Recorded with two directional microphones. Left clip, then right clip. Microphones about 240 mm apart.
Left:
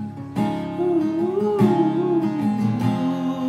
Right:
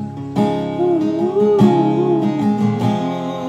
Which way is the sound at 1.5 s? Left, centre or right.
Right.